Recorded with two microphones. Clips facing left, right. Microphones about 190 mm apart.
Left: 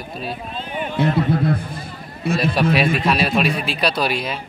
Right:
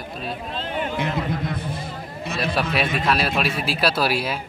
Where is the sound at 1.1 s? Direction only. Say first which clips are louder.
Left 7 dB; 30° left (ahead or behind).